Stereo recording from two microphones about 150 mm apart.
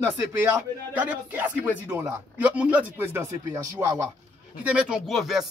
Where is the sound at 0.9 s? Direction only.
10° right (ahead or behind).